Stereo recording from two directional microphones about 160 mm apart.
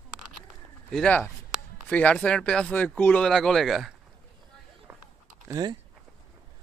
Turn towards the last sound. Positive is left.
turn(degrees=-25)  # may be behind; listen again after turning